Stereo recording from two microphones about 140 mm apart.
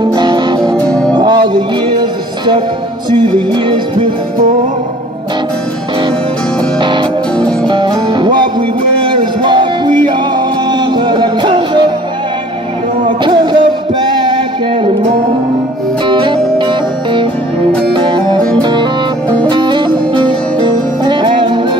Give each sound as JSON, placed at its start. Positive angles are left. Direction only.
{"t": 0.1, "sound": "music", "side_deg": -35}
{"t": 0.7, "sound": "music", "side_deg": 5}
{"t": 1.1, "sound": "music", "side_deg": -30}
{"t": 6.8, "sound": "music", "side_deg": -35}
{"t": 13.2, "sound": "music", "side_deg": -30}
{"t": 16.1, "sound": "music", "side_deg": -35}